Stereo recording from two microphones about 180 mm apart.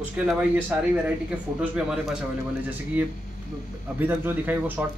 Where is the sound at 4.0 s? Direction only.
10° right (ahead or behind).